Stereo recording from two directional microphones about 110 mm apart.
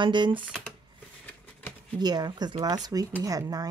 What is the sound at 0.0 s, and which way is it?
Speech, 45° right (ahead or behind).